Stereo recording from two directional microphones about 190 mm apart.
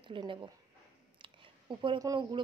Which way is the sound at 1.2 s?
25° right (ahead or behind).